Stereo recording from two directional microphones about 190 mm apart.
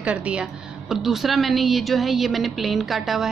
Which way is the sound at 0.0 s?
5° right (ahead or behind).